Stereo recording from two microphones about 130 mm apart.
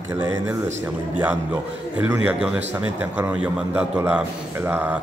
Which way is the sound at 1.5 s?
10° right (ahead or behind).